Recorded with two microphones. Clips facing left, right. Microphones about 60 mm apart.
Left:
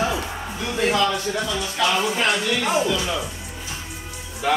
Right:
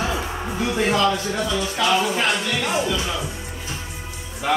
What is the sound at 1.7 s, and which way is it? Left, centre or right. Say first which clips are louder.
A man's voice: right 1 dB; centre.